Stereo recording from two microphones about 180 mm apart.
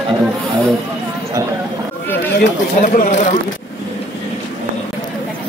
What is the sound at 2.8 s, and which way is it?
Speech, 45° left (ahead or behind).